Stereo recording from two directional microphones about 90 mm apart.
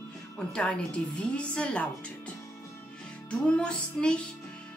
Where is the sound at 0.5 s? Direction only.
10° left (ahead or behind).